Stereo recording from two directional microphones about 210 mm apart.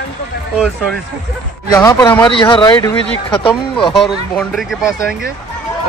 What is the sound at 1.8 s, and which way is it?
Speech, 15° left (ahead or behind).